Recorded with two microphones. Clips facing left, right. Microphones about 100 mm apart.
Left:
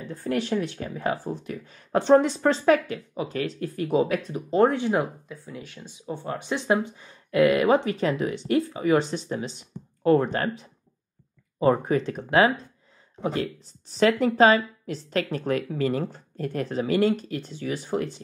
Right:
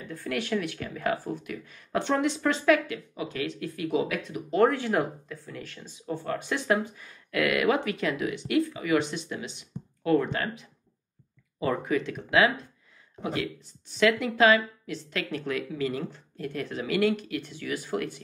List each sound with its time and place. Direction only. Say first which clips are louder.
0.0 s speech: left 5 dB; 35° left (ahead or behind)